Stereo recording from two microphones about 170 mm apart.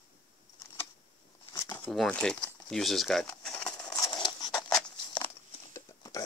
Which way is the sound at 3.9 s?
25° left (ahead or behind).